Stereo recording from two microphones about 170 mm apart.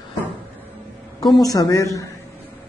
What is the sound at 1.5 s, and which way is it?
Speech, 20° left (ahead or behind).